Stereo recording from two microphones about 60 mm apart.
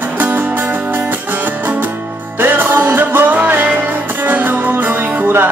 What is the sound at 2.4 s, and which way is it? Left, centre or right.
Music, right.